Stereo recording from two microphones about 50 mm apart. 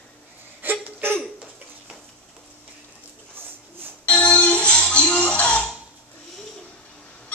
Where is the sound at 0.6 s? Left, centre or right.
Right.